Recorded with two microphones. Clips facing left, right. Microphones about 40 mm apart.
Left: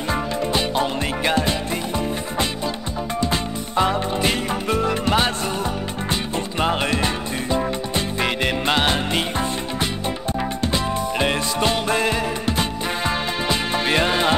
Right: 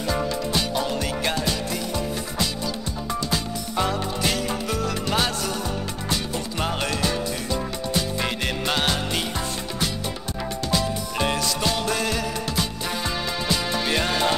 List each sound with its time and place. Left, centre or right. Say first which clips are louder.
0.1 s music: left 3 dB; left
3.3 s music: left 3 dB; left
6.6 s music: left 5 dB; left
10.7 s music: left 3 dB; left